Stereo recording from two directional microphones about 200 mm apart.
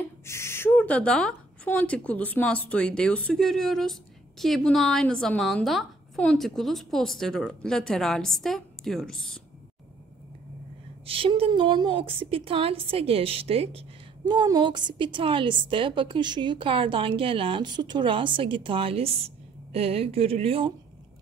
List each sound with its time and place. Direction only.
0.0 s a woman's voice: 10° left (ahead or behind)
11.1 s a woman's voice: 25° right (ahead or behind)